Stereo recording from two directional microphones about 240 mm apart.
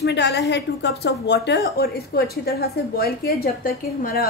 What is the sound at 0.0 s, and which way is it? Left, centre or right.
A woman's voice, left.